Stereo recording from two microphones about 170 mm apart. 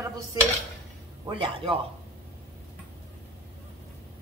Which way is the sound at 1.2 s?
30° right (ahead or behind).